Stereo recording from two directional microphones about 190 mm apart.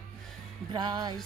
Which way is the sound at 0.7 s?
25° right (ahead or behind).